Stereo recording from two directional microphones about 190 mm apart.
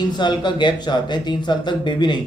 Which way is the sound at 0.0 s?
20° left (ahead or behind).